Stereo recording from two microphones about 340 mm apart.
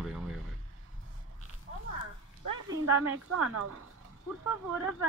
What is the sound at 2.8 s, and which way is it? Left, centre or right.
Speech, right.